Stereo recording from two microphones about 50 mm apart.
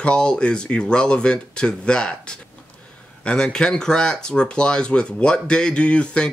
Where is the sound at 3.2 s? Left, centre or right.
Centre.